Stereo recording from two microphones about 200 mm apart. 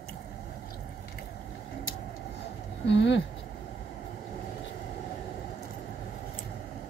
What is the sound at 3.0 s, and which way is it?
Speech, 60° left (ahead or behind).